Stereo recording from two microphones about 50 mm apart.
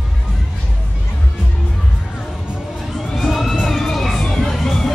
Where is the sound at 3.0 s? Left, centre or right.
Centre.